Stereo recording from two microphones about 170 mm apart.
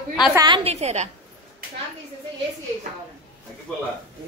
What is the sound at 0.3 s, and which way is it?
Speech, 20° right (ahead or behind).